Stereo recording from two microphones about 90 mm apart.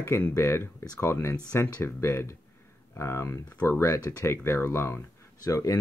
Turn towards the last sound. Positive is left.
turn(degrees=40)  # may be behind; listen again after turning